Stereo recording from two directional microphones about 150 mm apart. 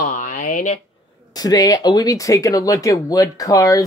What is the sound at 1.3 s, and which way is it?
Speech, 25° left (ahead or behind).